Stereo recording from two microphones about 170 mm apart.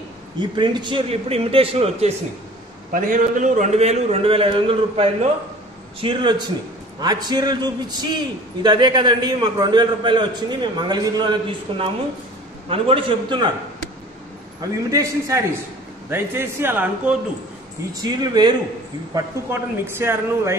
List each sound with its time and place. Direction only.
0.4 s a man's voice: 25° right (ahead or behind)
2.9 s a man's voice: 55° right (ahead or behind); by 13.5 s 30° right (ahead or behind)
14.9 s a man's voice: 20° right (ahead or behind)
18.0 s a man's voice: 25° right (ahead or behind)
19.1 s a man's voice: 15° right (ahead or behind)